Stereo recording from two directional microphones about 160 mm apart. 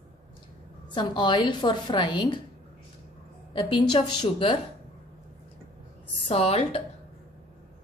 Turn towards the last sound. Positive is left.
turn(degrees=35)  # may be behind; listen again after turning